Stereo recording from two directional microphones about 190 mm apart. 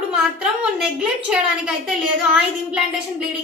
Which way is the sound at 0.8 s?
5° right (ahead or behind).